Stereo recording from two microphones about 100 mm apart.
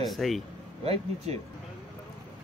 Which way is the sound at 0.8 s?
90° right.